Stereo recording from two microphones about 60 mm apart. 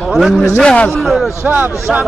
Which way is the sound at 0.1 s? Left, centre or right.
Centre.